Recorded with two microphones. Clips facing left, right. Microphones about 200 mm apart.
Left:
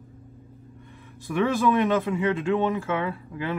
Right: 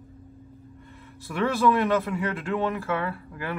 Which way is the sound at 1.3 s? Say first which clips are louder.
Left 1 dB; 15° left (ahead or behind).